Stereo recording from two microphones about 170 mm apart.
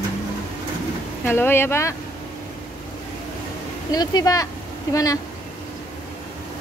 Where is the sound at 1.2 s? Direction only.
15° left (ahead or behind).